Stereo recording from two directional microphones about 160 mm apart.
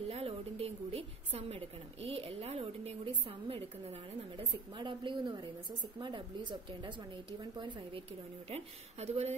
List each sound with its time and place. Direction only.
0.1 s a woman's voice: 35° right (ahead or behind)
8.5 s a woman's voice: 40° right (ahead or behind)